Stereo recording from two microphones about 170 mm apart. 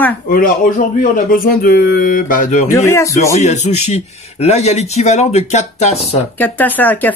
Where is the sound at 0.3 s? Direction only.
55° left (ahead or behind).